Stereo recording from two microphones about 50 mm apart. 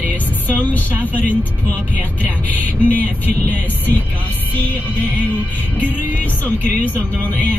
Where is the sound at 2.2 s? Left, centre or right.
Left.